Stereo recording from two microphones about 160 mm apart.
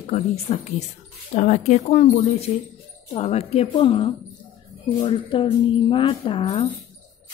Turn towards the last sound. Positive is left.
turn(degrees=30)  # may be behind; listen again after turning